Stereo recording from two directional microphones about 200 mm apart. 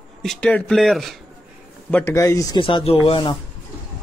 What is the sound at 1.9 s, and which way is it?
Speech, 10° left (ahead or behind).